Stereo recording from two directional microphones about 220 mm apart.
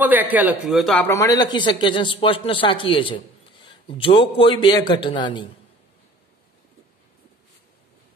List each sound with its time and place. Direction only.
0.0 s speech: 10° right (ahead or behind); by 5.5 s 20° left (ahead or behind)